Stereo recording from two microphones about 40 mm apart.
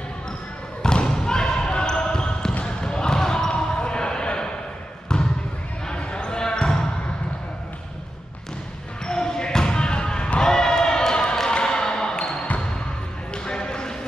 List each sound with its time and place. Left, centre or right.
0.8 s basketball bounce: centre
9.0 s basketball bounce: centre
10.4 s a sound: centre
11.5 s basketball bounce: centre